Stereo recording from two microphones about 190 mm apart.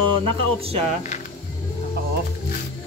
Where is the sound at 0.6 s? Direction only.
30° right (ahead or behind).